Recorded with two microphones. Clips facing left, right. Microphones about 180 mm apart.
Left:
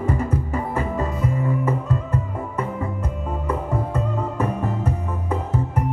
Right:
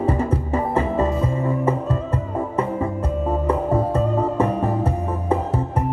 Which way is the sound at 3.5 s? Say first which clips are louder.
Right 4 dB; 30° right (ahead or behind).